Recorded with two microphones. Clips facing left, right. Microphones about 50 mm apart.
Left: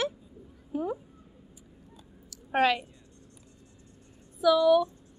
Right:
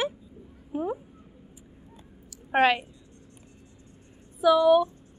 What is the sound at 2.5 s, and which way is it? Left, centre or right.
Speech, right.